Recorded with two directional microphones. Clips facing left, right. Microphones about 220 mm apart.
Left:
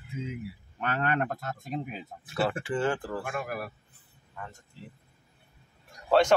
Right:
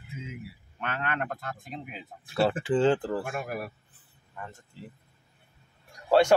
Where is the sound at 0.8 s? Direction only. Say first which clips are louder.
Left 4 dB; 40° left (ahead or behind).